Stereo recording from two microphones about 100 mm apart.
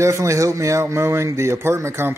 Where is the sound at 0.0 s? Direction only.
30° right (ahead or behind).